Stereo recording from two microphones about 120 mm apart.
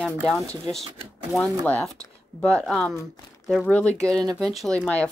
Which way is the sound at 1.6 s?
15° left (ahead or behind).